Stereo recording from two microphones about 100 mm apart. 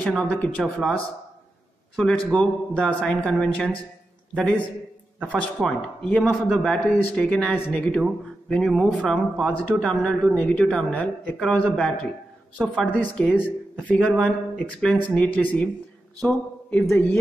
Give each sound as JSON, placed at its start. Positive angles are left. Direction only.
{"t": 0.0, "sound": "a man's voice", "side_deg": 10}
{"t": 2.0, "sound": "a man's voice", "side_deg": 10}
{"t": 8.6, "sound": "a man's voice", "side_deg": 0}
{"t": 16.8, "sound": "a man's voice", "side_deg": 20}